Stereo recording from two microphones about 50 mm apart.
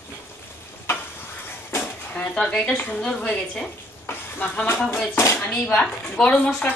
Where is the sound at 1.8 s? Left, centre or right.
Left.